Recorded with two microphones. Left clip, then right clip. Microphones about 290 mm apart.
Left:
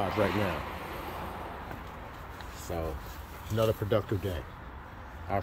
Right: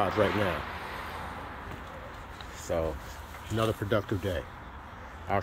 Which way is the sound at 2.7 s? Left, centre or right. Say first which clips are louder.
Right 6 dB; centre.